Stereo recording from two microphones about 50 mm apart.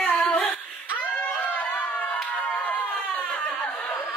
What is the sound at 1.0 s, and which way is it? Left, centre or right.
Clapping, left.